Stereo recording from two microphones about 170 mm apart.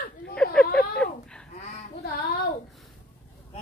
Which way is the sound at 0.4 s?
5° left (ahead or behind).